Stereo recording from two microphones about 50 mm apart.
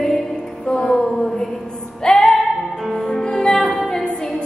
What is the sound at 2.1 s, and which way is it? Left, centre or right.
Music, centre.